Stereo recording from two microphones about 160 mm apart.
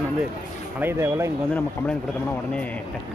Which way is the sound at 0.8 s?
15° right (ahead or behind).